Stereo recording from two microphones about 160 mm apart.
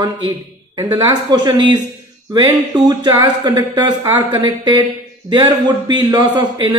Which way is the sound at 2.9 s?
25° right (ahead or behind).